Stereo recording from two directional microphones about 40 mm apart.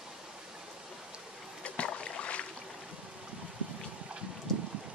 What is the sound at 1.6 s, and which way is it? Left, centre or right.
Boat, left.